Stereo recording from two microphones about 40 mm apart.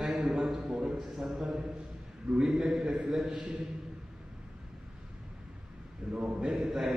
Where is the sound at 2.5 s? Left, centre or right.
Centre.